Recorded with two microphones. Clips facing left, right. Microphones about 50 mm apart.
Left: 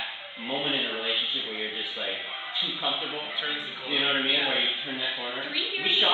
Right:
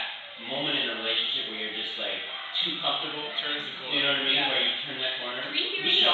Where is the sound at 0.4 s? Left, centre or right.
Left.